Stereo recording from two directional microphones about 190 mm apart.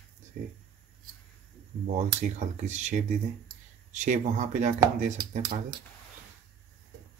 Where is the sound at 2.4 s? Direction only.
40° right (ahead or behind).